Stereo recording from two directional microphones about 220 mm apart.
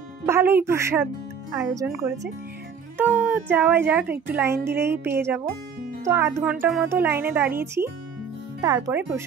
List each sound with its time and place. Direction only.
0.3 s a child's voice: 10° right (ahead or behind)
3.0 s a child's voice: 5° right (ahead or behind)
4.6 s a woman's voice: 50° right (ahead or behind)
4.8 s a child's voice: 10° right (ahead or behind)